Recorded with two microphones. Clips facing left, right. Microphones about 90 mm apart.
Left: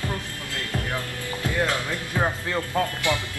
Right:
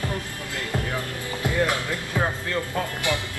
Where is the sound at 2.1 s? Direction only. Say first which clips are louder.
Left 1 dB; 20° left (ahead or behind).